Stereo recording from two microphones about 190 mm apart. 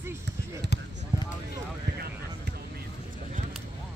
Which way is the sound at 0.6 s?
60° right (ahead or behind).